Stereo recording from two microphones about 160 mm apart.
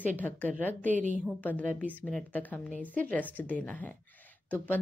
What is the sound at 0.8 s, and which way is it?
Speech, 50° right (ahead or behind).